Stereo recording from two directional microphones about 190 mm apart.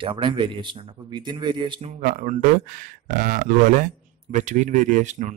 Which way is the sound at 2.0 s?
45° right (ahead or behind).